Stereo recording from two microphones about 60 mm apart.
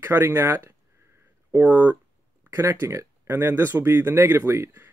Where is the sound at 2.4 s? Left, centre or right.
Right.